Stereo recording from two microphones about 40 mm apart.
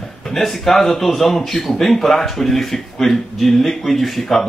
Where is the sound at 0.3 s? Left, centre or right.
Centre.